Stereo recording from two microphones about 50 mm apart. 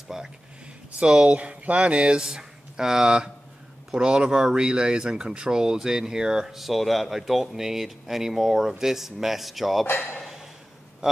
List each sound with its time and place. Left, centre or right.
0.1 s speech: centre